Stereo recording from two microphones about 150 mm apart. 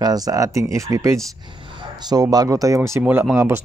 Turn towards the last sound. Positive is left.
turn(degrees=-15)  # may be behind; listen again after turning